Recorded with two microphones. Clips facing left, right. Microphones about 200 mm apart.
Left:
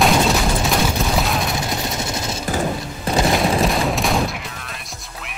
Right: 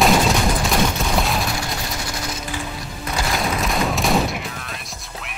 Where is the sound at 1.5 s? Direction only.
20° left (ahead or behind).